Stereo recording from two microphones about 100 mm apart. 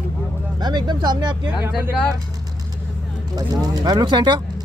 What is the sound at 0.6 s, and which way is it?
Speech, 45° right (ahead or behind).